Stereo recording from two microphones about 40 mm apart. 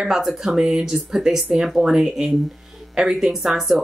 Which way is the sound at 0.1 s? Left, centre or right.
Centre.